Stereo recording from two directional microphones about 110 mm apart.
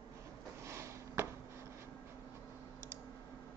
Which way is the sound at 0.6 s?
25° right (ahead or behind).